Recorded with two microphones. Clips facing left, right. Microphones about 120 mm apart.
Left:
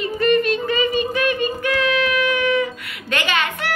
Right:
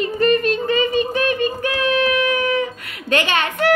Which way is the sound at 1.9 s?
40° right (ahead or behind).